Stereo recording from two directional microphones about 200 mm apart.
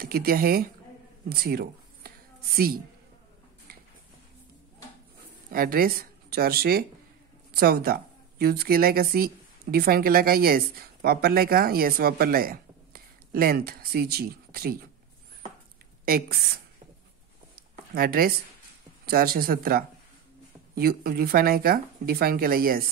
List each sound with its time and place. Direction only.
0.0 s speech: 50° right (ahead or behind)
1.3 s a sound: 50° right (ahead or behind)
5.5 s a woman's voice: 45° right (ahead or behind)
16.1 s speech: 50° right (ahead or behind)
17.6 s a sound: 50° right (ahead or behind)
19.0 s speech: 50° right (ahead or behind)